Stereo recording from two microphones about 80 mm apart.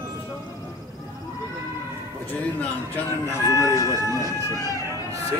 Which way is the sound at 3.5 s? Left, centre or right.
Left.